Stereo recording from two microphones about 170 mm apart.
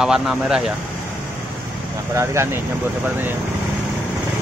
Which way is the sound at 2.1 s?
15° right (ahead or behind).